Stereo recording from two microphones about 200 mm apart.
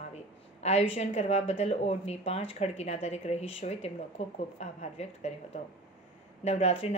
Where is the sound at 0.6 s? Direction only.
30° left (ahead or behind).